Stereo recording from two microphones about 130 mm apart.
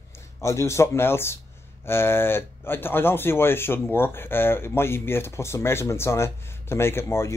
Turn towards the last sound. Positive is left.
turn(degrees=20)  # may be behind; listen again after turning